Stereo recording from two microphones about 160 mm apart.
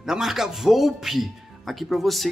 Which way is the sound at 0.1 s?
Centre (ahead or behind).